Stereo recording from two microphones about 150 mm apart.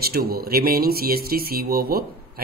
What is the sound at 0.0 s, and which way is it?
Speech, 90° right.